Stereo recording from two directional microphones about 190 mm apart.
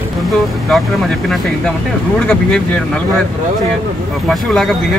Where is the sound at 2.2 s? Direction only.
5° left (ahead or behind).